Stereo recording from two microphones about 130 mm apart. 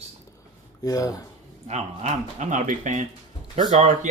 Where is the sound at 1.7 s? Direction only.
55° right (ahead or behind).